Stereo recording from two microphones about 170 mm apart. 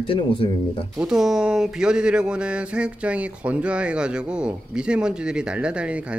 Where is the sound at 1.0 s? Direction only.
5° right (ahead or behind).